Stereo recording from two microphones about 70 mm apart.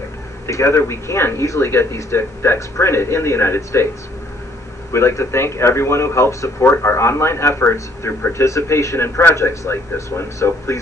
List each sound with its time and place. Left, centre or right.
0.5 s speech: left
4.9 s speech: left